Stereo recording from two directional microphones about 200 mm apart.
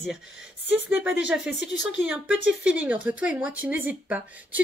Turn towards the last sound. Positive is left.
turn(degrees=-10)  # may be behind; listen again after turning